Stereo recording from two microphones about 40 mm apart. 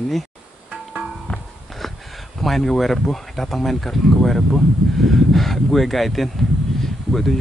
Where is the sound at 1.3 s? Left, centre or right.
Left.